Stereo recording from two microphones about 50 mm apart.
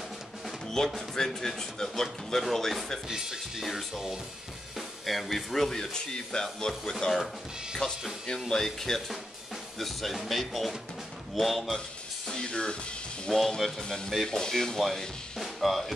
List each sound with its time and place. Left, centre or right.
0.7 s speech: centre
3.1 s speech: centre
12.3 s speech: centre
13.3 s speech: centre